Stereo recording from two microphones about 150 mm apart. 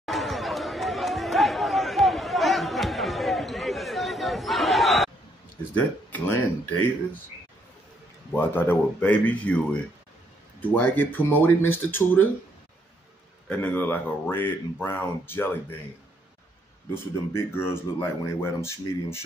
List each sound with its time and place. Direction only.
0.0 s chatter: centre (ahead or behind)
5.8 s speech: 10° left (ahead or behind)
8.4 s speech: 10° left (ahead or behind)
13.5 s speech: 10° left (ahead or behind)
16.9 s speech: 15° left (ahead or behind)